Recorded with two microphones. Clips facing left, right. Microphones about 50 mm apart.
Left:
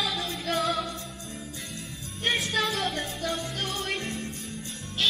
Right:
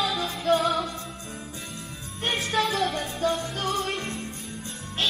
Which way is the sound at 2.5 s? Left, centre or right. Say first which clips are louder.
Right 3 dB; right.